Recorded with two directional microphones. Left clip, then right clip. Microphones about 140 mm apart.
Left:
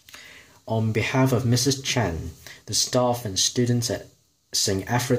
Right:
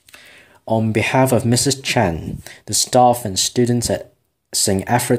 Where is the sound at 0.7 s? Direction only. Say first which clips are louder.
Right 8 dB; 40° right (ahead or behind).